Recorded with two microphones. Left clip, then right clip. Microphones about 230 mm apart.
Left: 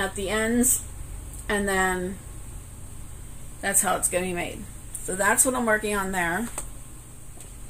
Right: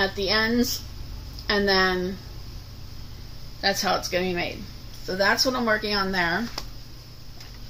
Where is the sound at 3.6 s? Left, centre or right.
Centre.